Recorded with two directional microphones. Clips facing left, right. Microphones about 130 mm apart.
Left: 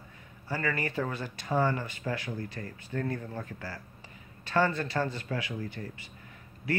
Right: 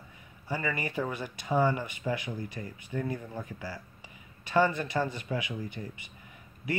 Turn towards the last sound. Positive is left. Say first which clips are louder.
# left 1 dB
turn(degrees=-15)  # may be behind; listen again after turning